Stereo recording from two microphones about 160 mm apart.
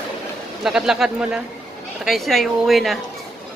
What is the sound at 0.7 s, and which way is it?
Speech, 5° right (ahead or behind).